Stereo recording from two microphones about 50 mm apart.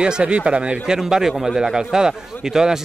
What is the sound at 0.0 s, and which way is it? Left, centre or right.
Speech, right.